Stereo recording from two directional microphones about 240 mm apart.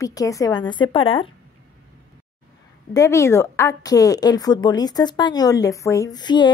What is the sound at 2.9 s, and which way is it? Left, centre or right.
A woman's voice, centre.